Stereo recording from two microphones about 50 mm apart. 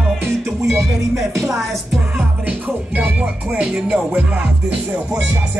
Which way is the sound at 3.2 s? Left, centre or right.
Right.